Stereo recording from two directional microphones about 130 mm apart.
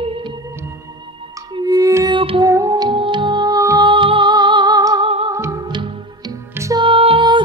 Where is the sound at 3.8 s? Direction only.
40° right (ahead or behind); by 6.8 s 25° right (ahead or behind).